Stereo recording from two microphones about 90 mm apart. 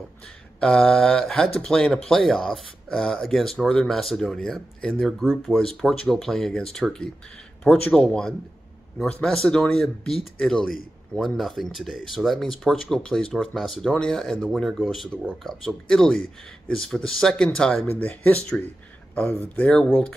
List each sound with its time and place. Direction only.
0.6 s speech: 5° left (ahead or behind)
17.9 s speech: 20° left (ahead or behind)